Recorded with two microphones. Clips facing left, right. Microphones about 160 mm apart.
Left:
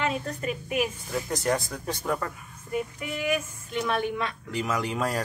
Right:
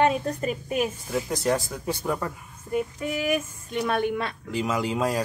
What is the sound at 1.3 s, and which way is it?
Speech, 5° right (ahead or behind).